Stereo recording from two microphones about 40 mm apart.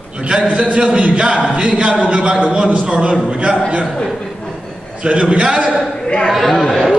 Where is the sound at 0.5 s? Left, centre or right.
Right.